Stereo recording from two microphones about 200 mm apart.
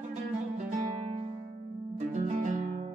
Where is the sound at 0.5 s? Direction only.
35° right (ahead or behind).